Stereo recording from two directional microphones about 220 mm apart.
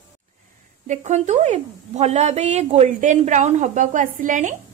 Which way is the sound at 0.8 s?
35° right (ahead or behind).